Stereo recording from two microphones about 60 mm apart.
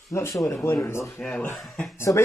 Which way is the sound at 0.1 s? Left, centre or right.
Left.